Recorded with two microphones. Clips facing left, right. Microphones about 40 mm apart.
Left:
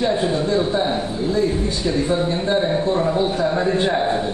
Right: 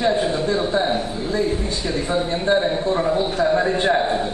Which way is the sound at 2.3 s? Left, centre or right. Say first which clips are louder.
Even; centre.